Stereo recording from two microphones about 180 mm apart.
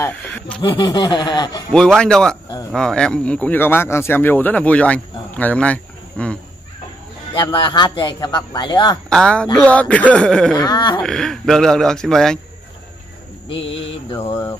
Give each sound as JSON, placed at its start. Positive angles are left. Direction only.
{"t": 0.6, "sound": "a man's voice", "side_deg": 25}
{"t": 2.0, "sound": "speech", "side_deg": 5}
{"t": 7.3, "sound": "a man's voice", "side_deg": 25}
{"t": 9.1, "sound": "speech", "side_deg": 5}
{"t": 10.5, "sound": "a man's voice", "side_deg": 20}
{"t": 11.0, "sound": "speech", "side_deg": 0}
{"t": 13.6, "sound": "mantra", "side_deg": 90}
{"t": 13.8, "sound": "mantra", "side_deg": 30}